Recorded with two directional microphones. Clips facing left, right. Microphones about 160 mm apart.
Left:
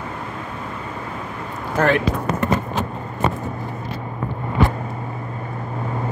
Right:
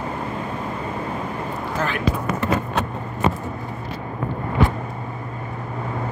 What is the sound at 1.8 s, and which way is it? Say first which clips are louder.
Speech: left 9 dB; 60° left (ahead or behind).